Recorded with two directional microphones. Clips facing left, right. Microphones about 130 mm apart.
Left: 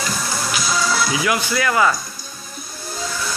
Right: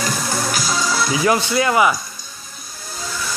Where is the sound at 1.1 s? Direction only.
30° right (ahead or behind).